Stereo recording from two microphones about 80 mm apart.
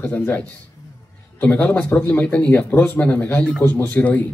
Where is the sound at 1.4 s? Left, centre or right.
Centre.